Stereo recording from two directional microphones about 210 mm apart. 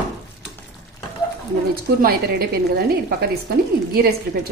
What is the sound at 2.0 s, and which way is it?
A woman's voice, 45° right (ahead or behind).